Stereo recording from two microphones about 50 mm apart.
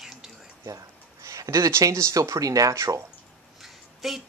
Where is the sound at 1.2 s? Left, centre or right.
Right.